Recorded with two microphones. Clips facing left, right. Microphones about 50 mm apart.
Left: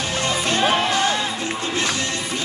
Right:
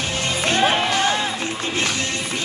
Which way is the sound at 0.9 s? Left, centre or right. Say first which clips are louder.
Even; right.